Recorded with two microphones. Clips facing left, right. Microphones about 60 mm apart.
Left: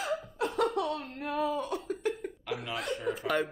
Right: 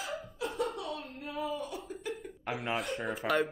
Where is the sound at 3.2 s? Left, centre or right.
Right.